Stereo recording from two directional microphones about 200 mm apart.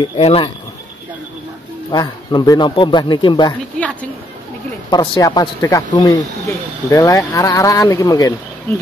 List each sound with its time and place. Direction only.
0.0 s speech: 30° left (ahead or behind)
1.9 s speech: 20° left (ahead or behind)
4.9 s speech: 20° left (ahead or behind)